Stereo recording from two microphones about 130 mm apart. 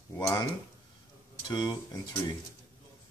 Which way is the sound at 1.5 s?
30° left (ahead or behind).